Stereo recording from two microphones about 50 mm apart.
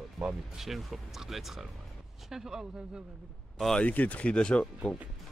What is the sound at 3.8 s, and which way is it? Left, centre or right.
Speech, left.